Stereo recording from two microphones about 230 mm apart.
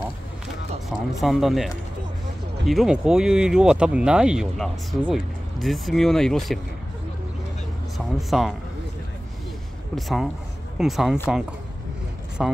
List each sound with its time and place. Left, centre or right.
0.8 s speech: centre
8.2 s speech: centre
9.9 s speech: centre
12.4 s speech: centre